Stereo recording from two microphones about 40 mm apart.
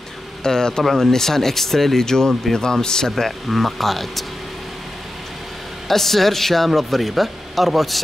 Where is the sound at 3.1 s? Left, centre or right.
Centre.